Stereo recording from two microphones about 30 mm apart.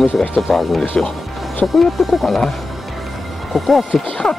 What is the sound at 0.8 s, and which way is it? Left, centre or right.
Speech, left.